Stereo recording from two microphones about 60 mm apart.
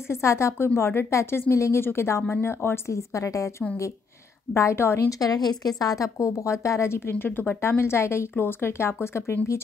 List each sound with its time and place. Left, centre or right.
0.1 s a woman's voice: left
5.2 s a woman's voice: left
7.1 s speech: left
7.6 s a woman's voice: left